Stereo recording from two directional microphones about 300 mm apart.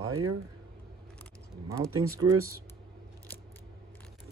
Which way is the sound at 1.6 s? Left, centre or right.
Centre.